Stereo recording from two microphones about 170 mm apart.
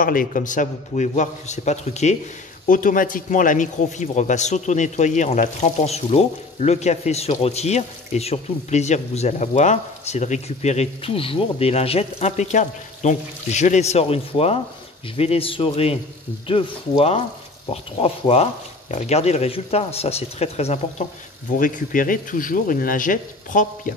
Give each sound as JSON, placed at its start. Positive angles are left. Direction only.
{"t": 0.0, "sound": "a man's voice", "side_deg": 55}
{"t": 2.7, "sound": "a man's voice", "side_deg": 50}
{"t": 21.5, "sound": "a man's voice", "side_deg": 55}